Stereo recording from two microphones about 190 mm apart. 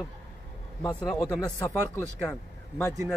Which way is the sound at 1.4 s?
15° left (ahead or behind).